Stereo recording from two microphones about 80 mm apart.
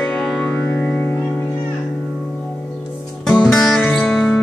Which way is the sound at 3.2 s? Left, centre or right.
Centre.